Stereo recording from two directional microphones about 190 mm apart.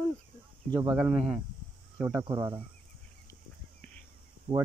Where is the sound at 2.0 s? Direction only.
25° right (ahead or behind).